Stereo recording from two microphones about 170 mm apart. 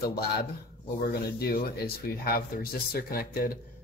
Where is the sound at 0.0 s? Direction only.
70° left (ahead or behind).